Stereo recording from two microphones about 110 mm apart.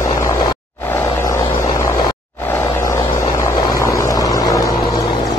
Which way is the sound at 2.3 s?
20° left (ahead or behind).